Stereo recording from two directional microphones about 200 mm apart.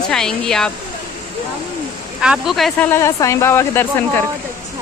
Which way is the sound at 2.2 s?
5° right (ahead or behind).